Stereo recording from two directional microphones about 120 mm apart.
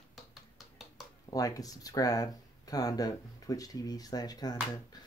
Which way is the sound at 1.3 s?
30° left (ahead or behind).